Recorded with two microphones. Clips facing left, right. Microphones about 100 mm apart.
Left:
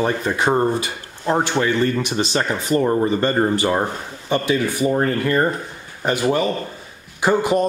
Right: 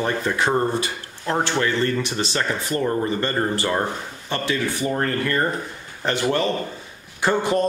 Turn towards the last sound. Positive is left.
turn(degrees=10)  # may be behind; listen again after turning